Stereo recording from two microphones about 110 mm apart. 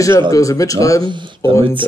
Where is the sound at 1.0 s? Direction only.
45° right (ahead or behind).